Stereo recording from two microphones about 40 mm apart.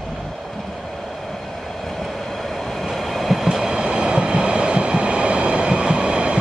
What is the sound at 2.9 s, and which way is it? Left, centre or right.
Train, centre.